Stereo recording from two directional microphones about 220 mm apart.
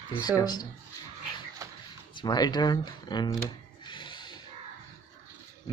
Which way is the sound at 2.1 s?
20° left (ahead or behind).